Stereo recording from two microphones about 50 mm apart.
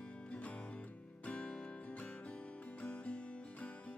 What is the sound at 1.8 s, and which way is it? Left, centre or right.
Music, left.